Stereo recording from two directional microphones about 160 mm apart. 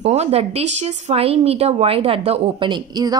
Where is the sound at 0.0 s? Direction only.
40° right (ahead or behind).